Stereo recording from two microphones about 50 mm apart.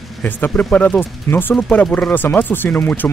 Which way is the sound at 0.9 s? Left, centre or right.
Left.